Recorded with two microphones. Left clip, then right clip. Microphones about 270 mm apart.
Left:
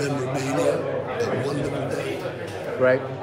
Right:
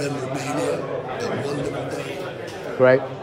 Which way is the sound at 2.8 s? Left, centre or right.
Right.